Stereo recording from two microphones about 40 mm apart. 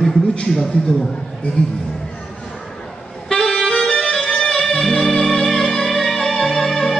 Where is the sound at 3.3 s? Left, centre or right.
Left.